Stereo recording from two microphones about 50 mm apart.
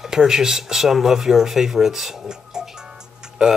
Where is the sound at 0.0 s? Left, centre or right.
Centre.